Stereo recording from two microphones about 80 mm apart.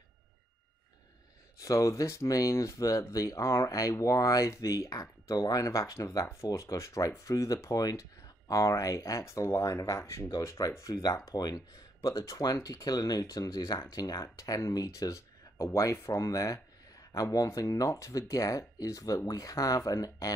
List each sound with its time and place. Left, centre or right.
1.6 s speech: left